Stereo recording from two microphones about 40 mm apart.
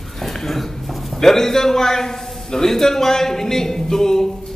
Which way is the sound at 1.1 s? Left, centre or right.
Centre.